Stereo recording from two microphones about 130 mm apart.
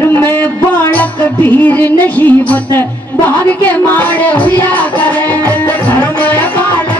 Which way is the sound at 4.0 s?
10° left (ahead or behind).